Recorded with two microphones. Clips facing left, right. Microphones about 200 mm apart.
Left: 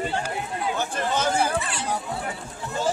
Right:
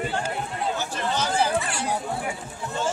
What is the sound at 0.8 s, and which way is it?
Chatter, 50° left (ahead or behind).